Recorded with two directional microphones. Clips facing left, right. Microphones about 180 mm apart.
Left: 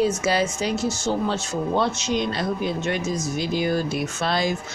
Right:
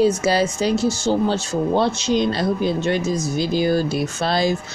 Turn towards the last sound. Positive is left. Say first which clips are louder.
# right 4 dB
turn(degrees=-35)  # may be behind; listen again after turning